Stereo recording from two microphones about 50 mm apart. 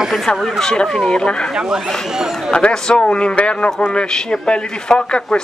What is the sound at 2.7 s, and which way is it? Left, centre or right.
Speech, centre.